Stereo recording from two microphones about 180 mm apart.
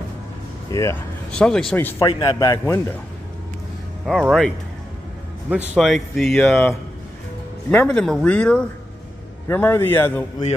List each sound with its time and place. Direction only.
0.7 s speech: 15° left (ahead or behind)
1.3 s speech: 5° left (ahead or behind)
2.0 s a man's voice: 25° left (ahead or behind)
4.0 s speech: centre (ahead or behind)
5.8 s speech: centre (ahead or behind)
7.7 s a man's voice: 10° left (ahead or behind)